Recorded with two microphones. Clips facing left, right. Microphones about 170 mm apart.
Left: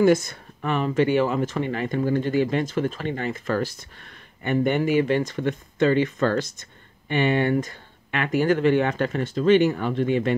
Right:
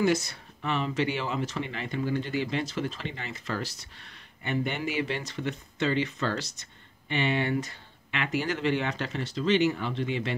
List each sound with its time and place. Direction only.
0.0 s speech: 50° left (ahead or behind)